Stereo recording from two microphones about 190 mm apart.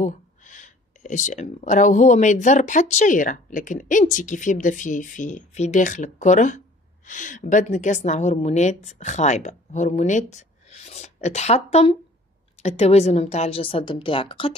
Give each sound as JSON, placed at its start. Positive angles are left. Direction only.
{"t": 0.0, "sound": "a woman's voice", "side_deg": 40}